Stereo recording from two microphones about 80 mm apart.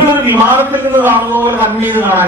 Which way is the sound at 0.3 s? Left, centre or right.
Right.